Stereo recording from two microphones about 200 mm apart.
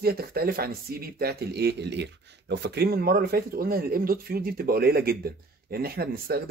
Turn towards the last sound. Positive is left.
turn(degrees=-50)  # may be behind; listen again after turning